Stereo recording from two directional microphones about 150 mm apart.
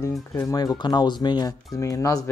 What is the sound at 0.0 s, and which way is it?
Speech, 20° left (ahead or behind).